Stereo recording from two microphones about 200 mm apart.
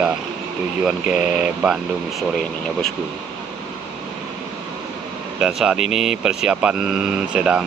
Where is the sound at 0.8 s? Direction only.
5° right (ahead or behind).